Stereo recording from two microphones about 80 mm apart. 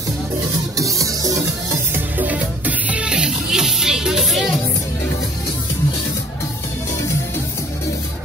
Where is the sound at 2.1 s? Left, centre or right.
Right; by 4.6 s centre.